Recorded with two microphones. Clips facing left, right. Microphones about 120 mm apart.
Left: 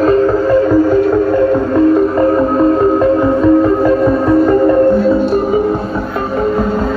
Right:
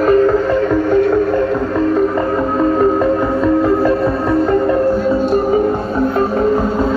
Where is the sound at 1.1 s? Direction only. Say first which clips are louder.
Left 3 dB; 20° left (ahead or behind).